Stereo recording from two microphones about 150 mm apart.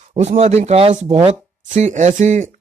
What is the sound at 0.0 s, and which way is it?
Speech, 50° right (ahead or behind).